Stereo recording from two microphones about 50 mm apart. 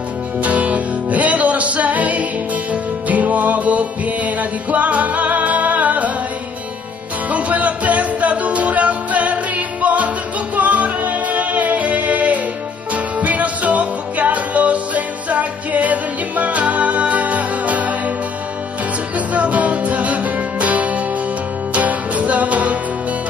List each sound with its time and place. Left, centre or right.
0.4 s music: right
7.2 s music: right
19.1 s music: right